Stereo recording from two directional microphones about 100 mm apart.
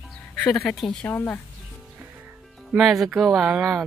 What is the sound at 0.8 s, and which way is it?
Speech, 20° left (ahead or behind).